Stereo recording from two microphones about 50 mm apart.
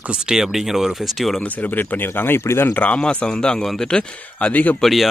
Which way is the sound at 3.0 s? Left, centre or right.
Centre.